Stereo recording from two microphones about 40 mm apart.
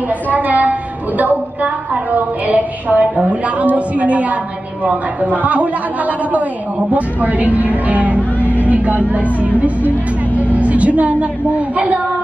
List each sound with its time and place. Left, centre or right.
0.3 s a woman's voice: right